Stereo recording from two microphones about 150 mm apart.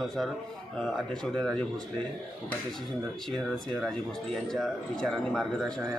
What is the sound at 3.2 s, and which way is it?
Speech, centre (ahead or behind).